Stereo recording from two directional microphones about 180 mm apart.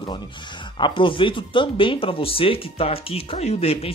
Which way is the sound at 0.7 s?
25° left (ahead or behind).